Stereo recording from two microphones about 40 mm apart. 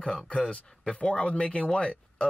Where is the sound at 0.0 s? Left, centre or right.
Centre.